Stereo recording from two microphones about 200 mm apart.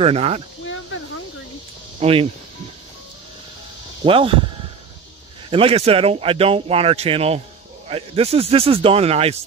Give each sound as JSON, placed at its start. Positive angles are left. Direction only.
{"t": 0.0, "sound": "speech", "side_deg": -30}
{"t": 2.0, "sound": "speech", "side_deg": -30}
{"t": 4.0, "sound": "speech", "side_deg": -25}
{"t": 5.5, "sound": "speech", "side_deg": -30}